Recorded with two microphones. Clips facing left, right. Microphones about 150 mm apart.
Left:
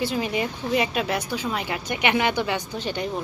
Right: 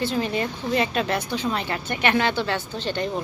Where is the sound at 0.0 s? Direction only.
10° left (ahead or behind).